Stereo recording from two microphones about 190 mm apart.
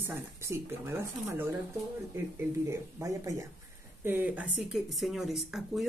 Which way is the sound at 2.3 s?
15° right (ahead or behind).